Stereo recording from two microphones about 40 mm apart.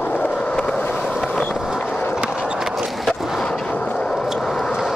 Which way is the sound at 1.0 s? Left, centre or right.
Centre.